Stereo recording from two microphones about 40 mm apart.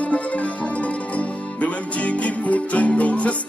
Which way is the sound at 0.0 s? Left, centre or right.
Left.